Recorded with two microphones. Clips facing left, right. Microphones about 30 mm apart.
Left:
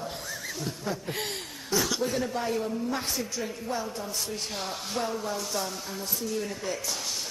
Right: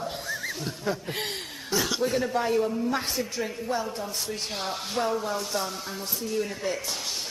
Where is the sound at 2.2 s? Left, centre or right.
Centre.